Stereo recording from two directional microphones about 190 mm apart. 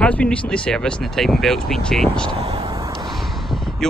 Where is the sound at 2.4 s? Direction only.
30° right (ahead or behind).